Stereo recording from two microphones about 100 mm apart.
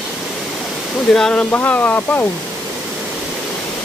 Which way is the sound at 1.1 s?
10° left (ahead or behind).